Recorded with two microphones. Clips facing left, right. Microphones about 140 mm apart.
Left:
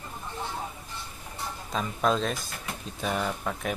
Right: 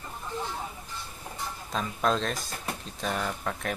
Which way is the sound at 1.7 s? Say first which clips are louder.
Left 1 dB; centre (ahead or behind).